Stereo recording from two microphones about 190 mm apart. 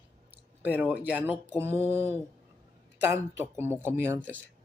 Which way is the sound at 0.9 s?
10° right (ahead or behind).